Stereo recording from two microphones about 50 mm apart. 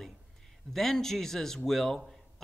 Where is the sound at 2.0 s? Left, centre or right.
Centre.